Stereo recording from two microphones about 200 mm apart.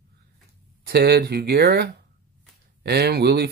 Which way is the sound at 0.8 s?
50° right (ahead or behind).